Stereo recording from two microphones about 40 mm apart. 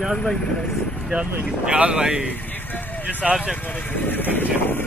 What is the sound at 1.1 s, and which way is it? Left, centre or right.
Speech, right.